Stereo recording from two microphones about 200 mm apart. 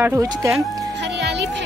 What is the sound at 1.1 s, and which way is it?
Music, 55° right (ahead or behind).